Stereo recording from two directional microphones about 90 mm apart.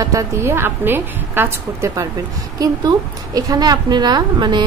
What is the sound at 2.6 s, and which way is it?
A woman's voice, 45° right (ahead or behind).